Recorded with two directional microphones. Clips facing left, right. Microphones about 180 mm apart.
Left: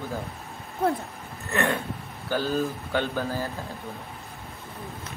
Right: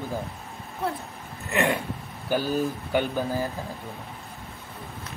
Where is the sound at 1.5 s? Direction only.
15° right (ahead or behind).